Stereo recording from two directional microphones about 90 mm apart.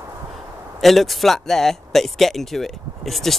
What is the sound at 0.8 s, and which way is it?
Speech, centre (ahead or behind).